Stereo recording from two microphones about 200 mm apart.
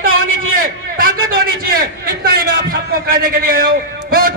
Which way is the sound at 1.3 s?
50° right (ahead or behind).